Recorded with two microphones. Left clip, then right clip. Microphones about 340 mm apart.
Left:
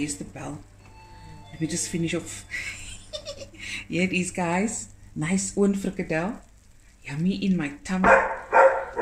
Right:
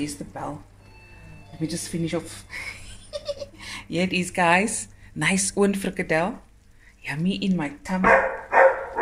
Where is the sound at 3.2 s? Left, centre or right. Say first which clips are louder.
Right 4 dB; centre.